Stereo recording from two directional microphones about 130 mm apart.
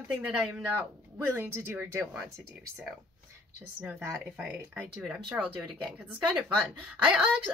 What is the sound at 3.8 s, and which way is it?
Speech, 10° right (ahead or behind).